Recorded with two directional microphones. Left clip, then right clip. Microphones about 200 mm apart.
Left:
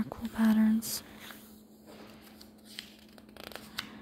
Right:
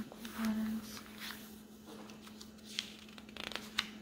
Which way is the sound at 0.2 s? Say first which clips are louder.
Left 6 dB; 5° right (ahead or behind).